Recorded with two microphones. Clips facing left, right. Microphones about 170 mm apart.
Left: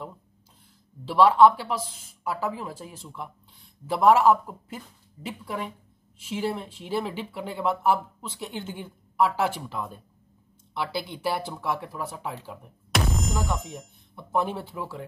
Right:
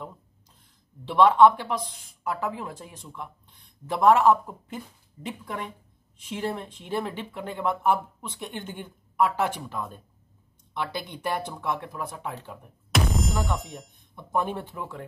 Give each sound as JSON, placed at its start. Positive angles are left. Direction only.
{"t": 1.0, "sound": "speech", "side_deg": 5}
{"t": 14.1, "sound": "speech", "side_deg": 5}